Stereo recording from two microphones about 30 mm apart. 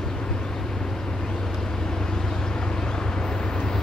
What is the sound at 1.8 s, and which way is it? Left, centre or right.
Vehicle, centre.